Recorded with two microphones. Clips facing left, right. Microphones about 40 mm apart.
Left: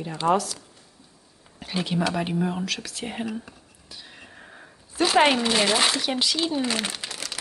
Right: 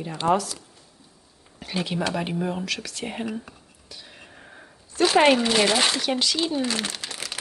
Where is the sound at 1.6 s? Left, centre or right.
Centre.